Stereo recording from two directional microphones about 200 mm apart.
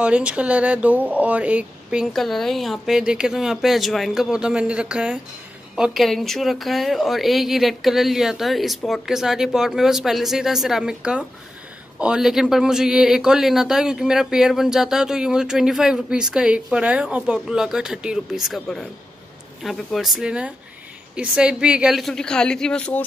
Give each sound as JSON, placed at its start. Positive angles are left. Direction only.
{"t": 0.0, "sound": "a man's voice", "side_deg": -5}